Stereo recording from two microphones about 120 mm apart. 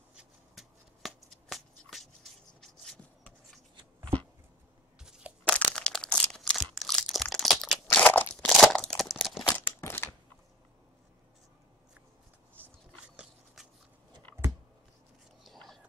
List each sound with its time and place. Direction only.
0.1 s shuffling cards: 5° right (ahead or behind)
2.6 s a sound: 5° left (ahead or behind)
5.4 s crunch: 10° left (ahead or behind)
7.9 s crunch: 15° left (ahead or behind); by 9.4 s centre (ahead or behind)
9.5 s crumpling: 15° left (ahead or behind)
13.1 s biting: 5° right (ahead or behind)
15.4 s whispering: centre (ahead or behind)